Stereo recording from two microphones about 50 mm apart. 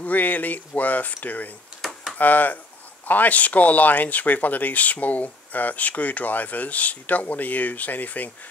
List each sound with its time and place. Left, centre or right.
0.0 s speech: left
1.8 s a sound: centre
2.1 s speech: left